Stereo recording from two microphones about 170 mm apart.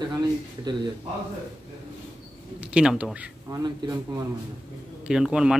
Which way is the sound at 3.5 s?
20° right (ahead or behind).